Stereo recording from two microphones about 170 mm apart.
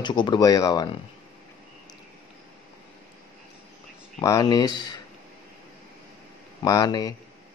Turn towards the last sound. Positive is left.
turn(degrees=25)  # may be behind; listen again after turning